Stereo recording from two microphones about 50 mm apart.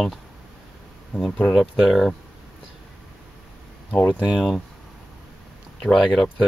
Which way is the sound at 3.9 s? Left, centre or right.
Left.